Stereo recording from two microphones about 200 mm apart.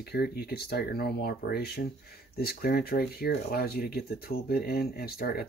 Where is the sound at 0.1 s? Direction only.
50° left (ahead or behind).